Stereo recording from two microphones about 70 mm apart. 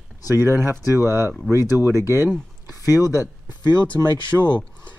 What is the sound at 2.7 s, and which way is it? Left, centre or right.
Speech, right.